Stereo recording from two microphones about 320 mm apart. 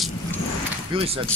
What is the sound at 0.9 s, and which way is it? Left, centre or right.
Speech, centre.